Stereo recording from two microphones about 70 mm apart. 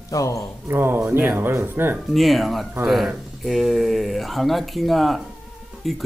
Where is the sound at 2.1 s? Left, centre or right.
Centre.